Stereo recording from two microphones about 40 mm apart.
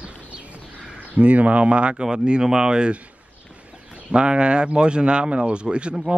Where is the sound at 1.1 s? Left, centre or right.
Right.